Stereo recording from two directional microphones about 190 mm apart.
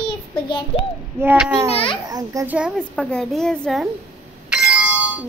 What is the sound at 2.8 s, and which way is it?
A woman's voice, 5° left (ahead or behind).